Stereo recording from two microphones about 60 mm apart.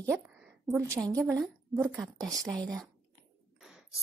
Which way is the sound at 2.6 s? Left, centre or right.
Right.